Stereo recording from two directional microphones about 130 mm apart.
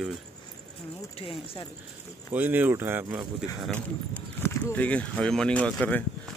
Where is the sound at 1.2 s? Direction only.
45° left (ahead or behind).